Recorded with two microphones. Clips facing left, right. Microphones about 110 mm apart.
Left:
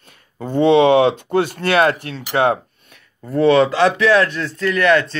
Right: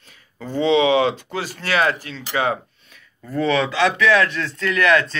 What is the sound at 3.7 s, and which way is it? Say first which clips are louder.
Speech: left 3 dB; 45° left (ahead or behind).